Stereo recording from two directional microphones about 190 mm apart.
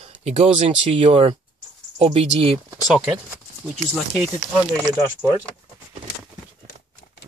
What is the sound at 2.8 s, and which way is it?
Speech, centre (ahead or behind).